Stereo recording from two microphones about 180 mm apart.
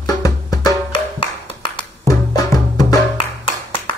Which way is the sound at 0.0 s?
20° left (ahead or behind).